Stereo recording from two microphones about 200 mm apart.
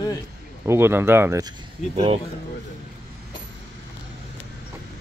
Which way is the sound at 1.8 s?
35° left (ahead or behind).